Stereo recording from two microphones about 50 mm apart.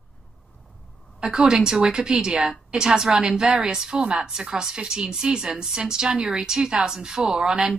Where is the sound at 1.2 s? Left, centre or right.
Centre.